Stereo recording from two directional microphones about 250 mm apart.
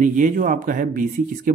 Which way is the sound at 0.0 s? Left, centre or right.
Right.